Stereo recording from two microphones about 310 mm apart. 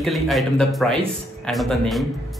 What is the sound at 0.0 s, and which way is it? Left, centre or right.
A man's voice, centre.